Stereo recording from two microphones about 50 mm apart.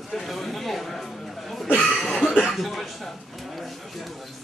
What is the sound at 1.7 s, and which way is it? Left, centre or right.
Chuckle, left.